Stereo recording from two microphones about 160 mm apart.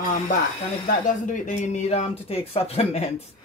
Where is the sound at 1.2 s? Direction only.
50° left (ahead or behind).